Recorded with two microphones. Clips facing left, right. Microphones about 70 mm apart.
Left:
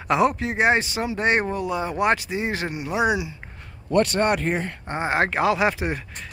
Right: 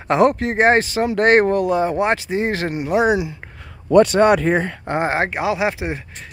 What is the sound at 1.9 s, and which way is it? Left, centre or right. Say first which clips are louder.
Speech: right 3 dB; right.